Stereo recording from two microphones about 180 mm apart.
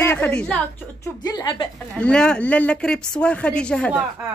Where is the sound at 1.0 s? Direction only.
20° left (ahead or behind).